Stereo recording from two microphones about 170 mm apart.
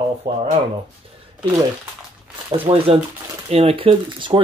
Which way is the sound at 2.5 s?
35° right (ahead or behind).